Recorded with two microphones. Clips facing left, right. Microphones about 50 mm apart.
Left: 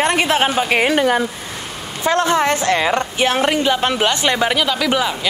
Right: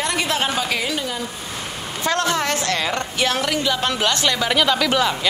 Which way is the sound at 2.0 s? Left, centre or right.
Left.